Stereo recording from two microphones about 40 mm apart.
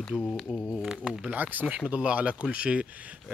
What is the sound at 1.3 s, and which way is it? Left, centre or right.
Speech, right.